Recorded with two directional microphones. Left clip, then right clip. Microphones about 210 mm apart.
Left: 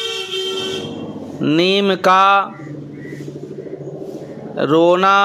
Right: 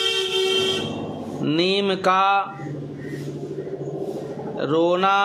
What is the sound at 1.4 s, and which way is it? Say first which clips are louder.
Speech: left 6 dB; 25° left (ahead or behind).